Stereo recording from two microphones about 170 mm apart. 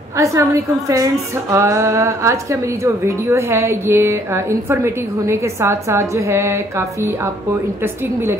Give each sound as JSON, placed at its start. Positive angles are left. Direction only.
{"t": 0.2, "sound": "speech", "side_deg": -15}